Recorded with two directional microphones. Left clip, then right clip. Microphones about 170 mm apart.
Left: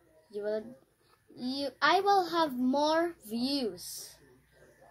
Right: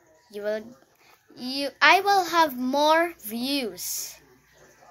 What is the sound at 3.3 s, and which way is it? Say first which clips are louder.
Speech: right 5 dB; 30° right (ahead or behind).